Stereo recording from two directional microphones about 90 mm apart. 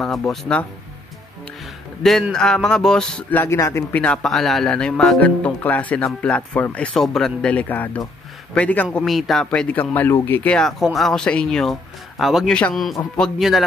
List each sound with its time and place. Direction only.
0.0 s speech: 5° left (ahead or behind)
2.0 s speech: 5° left (ahead or behind)
3.4 s speech: 35° left (ahead or behind)
3.9 s speech: 15° left (ahead or behind)
7.5 s speech: 20° left (ahead or behind)
8.9 s speech: 5° left (ahead or behind)
9.5 s speech: 15° left (ahead or behind)
10.8 s speech: centre (ahead or behind)
12.4 s speech: 15° left (ahead or behind)
13.2 s speech: centre (ahead or behind)